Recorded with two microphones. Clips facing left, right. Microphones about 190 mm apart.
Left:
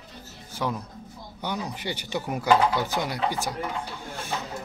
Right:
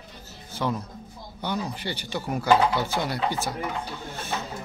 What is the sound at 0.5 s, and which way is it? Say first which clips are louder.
Speech: right 2 dB; 15° left (ahead or behind).